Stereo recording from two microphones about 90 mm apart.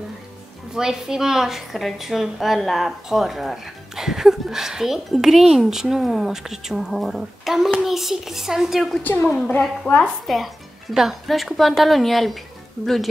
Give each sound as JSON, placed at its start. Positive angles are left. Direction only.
{"t": 0.7, "sound": "a woman's voice", "side_deg": -5}
{"t": 9.0, "sound": "a woman's voice", "side_deg": 20}
{"t": 9.9, "sound": "a woman's voice", "side_deg": 5}